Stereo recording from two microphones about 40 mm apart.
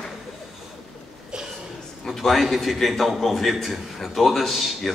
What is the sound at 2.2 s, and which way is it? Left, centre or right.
A man's voice, centre.